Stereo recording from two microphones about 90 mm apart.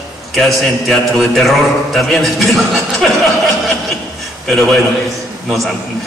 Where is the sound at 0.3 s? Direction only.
Centre (ahead or behind).